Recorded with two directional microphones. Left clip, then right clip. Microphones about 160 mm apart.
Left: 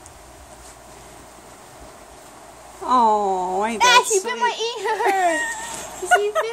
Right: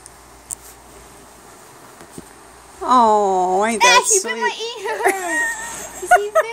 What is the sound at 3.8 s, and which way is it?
Speech, 5° left (ahead or behind).